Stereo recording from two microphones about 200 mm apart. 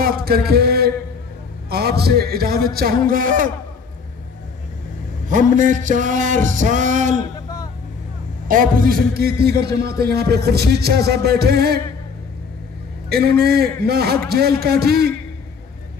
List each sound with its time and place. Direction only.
0.0 s a sound: 50° right (ahead or behind)
1.7 s a man's voice: 50° right (ahead or behind)
5.3 s music: 40° right (ahead or behind)
8.5 s a man's voice: 45° right (ahead or behind)
13.1 s a man's voice: 50° right (ahead or behind)